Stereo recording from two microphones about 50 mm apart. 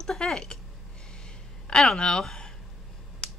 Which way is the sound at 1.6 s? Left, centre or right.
Centre.